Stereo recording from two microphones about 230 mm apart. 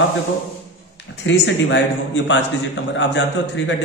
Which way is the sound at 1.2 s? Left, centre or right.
Left.